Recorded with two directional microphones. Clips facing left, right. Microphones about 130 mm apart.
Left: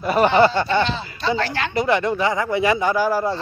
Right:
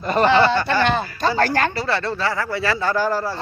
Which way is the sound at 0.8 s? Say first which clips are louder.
Right 4 dB; 50° right (ahead or behind).